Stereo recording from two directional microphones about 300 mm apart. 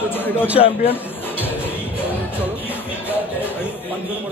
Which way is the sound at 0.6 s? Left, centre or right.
Centre.